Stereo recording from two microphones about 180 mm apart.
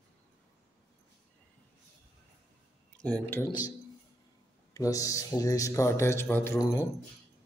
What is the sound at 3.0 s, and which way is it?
Speech, 10° left (ahead or behind).